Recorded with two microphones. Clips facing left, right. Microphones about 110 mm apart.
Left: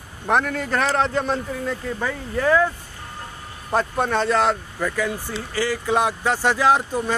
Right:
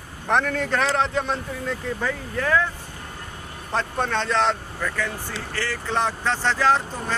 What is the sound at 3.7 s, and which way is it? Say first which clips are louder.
Speech: left 4 dB; 10° left (ahead or behind).